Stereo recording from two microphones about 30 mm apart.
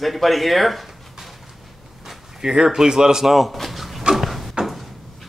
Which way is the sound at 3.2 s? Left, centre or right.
Centre.